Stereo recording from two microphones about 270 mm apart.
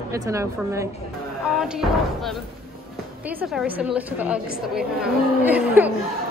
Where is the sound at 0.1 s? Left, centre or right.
Centre.